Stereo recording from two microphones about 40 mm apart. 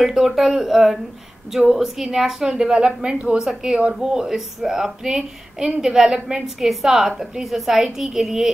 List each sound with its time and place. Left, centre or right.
0.0 s a woman's voice: centre
4.0 s a woman's voice: centre
6.6 s a woman's voice: centre